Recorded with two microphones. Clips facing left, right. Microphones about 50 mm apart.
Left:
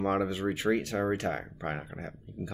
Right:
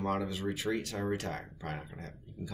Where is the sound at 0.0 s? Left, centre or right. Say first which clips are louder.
Left 5 dB; left.